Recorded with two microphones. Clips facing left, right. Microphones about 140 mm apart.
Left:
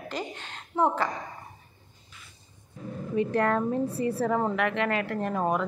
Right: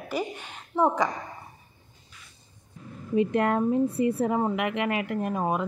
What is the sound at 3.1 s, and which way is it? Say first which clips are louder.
Speech: right 2 dB; 20° right (ahead or behind).